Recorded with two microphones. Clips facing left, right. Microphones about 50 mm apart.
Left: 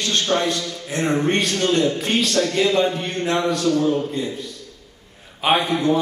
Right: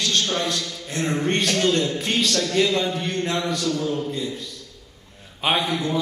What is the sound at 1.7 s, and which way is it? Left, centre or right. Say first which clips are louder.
A man's voice: left 3 dB; left.